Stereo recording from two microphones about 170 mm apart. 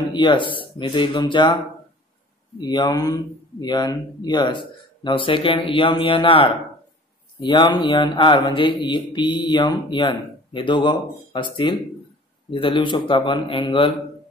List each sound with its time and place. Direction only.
0.1 s speech: 25° left (ahead or behind)
2.6 s speech: 25° left (ahead or behind)